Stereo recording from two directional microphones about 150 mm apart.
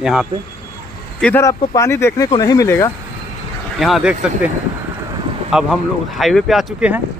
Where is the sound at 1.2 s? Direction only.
15° left (ahead or behind).